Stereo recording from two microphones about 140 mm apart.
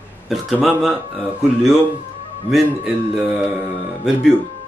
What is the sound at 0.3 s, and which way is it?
A man's voice, centre (ahead or behind).